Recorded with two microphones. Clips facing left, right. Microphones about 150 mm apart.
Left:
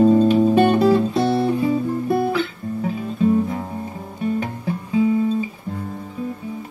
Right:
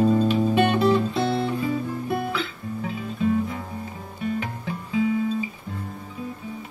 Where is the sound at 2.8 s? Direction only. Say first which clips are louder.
Left 6 dB; 40° left (ahead or behind).